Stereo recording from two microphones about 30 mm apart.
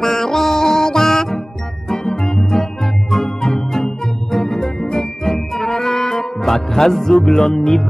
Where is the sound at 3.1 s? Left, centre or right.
Left.